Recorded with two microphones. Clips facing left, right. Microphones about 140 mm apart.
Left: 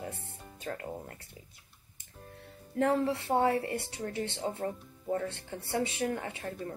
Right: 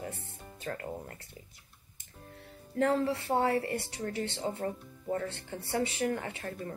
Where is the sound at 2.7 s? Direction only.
15° left (ahead or behind).